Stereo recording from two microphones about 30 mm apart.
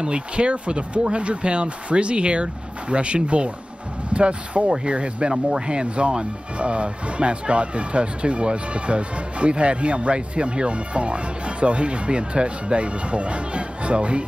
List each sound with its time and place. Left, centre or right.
0.0 s speech: right